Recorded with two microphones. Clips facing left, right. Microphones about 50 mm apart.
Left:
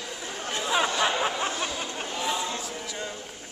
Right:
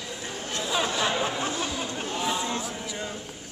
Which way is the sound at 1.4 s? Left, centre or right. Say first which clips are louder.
Even; centre.